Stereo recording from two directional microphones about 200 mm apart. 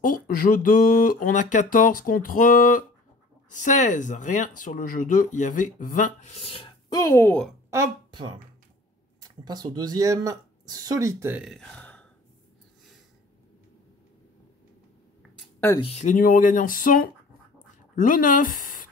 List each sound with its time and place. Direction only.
0.0 s speech: 45° left (ahead or behind); by 7.5 s 5° left (ahead or behind)
7.7 s speech: 15° right (ahead or behind); by 12.1 s 5° left (ahead or behind)
15.8 s speech: 35° left (ahead or behind)